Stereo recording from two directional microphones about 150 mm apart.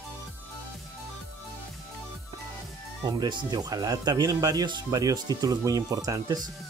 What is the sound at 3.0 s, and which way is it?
Speech, 30° right (ahead or behind).